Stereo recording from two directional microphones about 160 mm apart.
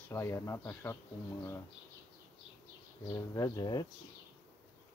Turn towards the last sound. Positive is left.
turn(degrees=25)  # may be behind; listen again after turning